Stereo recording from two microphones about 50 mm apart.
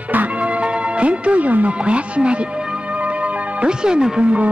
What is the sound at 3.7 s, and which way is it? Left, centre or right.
Speech, centre.